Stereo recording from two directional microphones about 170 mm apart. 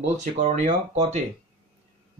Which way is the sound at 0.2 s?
40° right (ahead or behind).